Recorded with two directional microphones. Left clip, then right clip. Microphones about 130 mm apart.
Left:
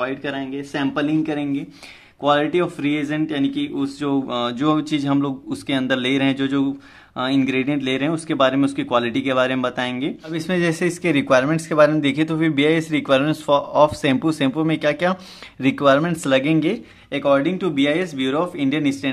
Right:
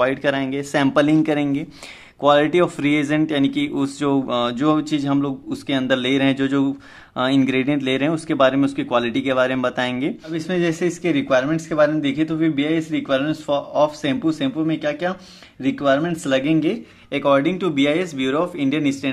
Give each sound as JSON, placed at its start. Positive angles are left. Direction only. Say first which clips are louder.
{"t": 0.0, "sound": "speech", "louder": "right 6 dB", "side_deg": -45}
{"t": 4.3, "sound": "speech", "louder": "right 1 dB", "side_deg": -15}
{"t": 10.3, "sound": "speech", "louder": "left 1 dB", "side_deg": 15}
{"t": 16.3, "sound": "speech", "louder": "even", "side_deg": 15}
{"t": 17.1, "sound": "speech", "louder": "right 1 dB", "side_deg": -10}